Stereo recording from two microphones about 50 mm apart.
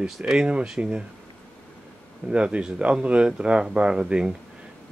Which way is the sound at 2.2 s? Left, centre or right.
Right.